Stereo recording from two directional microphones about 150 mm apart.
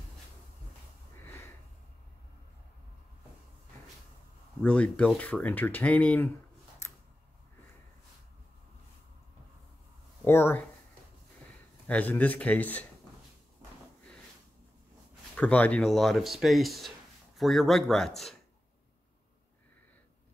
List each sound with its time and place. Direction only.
1.2 s a sound: 15° left (ahead or behind)
4.6 s speech: 10° left (ahead or behind)
10.2 s speech: 15° left (ahead or behind)
11.9 s speech: 10° left (ahead or behind)
15.3 s speech: 10° left (ahead or behind)